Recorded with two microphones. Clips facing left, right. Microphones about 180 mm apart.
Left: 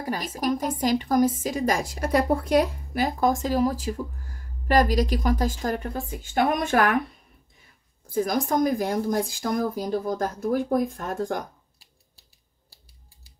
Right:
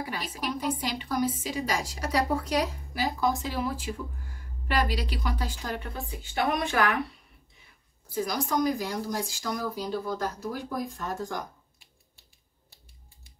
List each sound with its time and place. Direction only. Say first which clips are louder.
0.0 s a woman's voice: left 6 dB; 45° left (ahead or behind)
8.1 s a woman's voice: left 5 dB; 50° left (ahead or behind)
11.8 s typewriter: left 1 dB; 35° left (ahead or behind)